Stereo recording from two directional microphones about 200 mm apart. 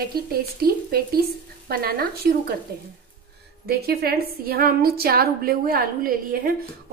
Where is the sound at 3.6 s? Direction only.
50° right (ahead or behind).